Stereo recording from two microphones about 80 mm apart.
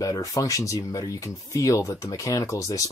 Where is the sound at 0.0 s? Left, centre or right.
Left.